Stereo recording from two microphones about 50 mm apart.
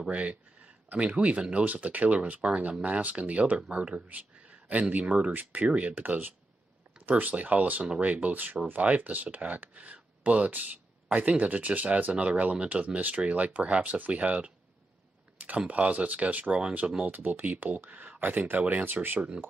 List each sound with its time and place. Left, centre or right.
0.1 s speech: right
5.3 s speech: right
8.1 s speech: right